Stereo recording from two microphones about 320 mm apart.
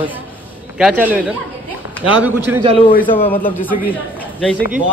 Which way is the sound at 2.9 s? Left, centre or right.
Left.